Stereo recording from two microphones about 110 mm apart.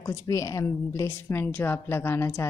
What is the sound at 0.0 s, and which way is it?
A woman's voice, 30° left (ahead or behind).